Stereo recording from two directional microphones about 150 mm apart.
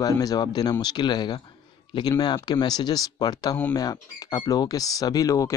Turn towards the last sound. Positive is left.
turn(degrees=20)  # may be behind; listen again after turning